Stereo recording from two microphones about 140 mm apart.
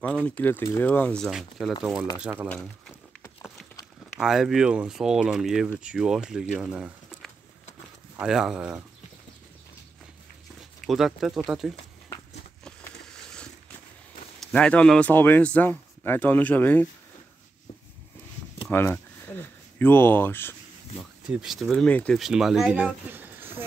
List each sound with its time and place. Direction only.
0.0 s a man's voice: 10° left (ahead or behind)
4.2 s speech: centre (ahead or behind)
6.6 s a sound: 5° right (ahead or behind)
8.2 s speech: 5° right (ahead or behind)
10.9 s speech: centre (ahead or behind)
14.4 s a man's voice: 10° left (ahead or behind)
18.7 s speech: 15° left (ahead or behind)
21.3 s speech: 5° right (ahead or behind)
22.2 s speech: 5° right (ahead or behind)